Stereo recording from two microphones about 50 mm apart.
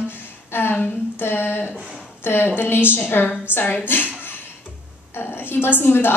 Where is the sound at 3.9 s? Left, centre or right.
Left.